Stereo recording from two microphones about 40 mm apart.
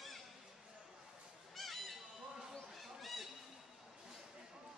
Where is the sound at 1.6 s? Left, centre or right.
Centre.